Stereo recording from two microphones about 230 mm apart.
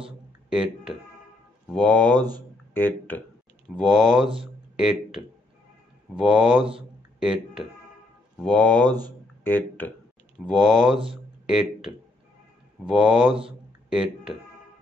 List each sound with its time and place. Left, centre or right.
0.0 s a sound: centre
1.7 s speech: centre
2.1 s speech: centre
2.7 s speech: centre
8.8 s speech: centre
9.4 s speech: centre